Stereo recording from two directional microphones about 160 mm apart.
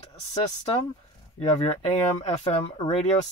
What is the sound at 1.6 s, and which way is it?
Speech, 40° left (ahead or behind).